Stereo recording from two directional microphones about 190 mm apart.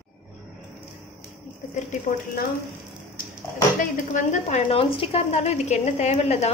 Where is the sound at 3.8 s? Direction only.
40° left (ahead or behind).